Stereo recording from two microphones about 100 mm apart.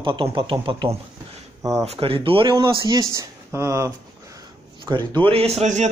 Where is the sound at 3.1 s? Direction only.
30° right (ahead or behind).